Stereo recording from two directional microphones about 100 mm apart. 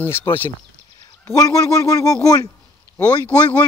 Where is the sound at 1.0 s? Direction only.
35° left (ahead or behind).